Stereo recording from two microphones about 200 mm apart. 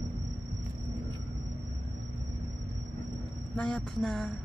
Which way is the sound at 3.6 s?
5° left (ahead or behind).